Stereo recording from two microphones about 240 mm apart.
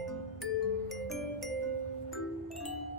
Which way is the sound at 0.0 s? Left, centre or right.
Centre.